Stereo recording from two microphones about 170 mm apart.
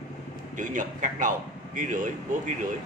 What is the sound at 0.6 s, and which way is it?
A man's voice, 50° right (ahead or behind).